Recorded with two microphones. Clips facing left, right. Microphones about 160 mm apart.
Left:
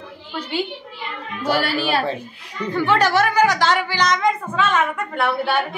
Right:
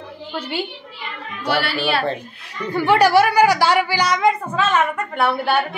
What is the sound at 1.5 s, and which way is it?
Speech, 40° left (ahead or behind).